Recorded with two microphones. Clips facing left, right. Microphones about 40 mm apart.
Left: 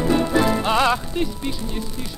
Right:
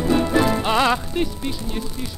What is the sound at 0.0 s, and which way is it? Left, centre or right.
Music, centre.